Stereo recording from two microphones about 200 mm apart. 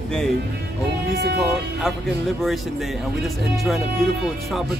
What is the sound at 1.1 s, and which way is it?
Speech, 55° right (ahead or behind).